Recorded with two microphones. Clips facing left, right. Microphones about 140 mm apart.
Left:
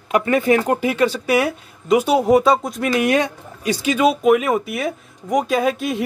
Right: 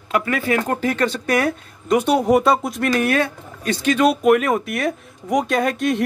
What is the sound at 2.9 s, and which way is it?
Speech, 15° left (ahead or behind).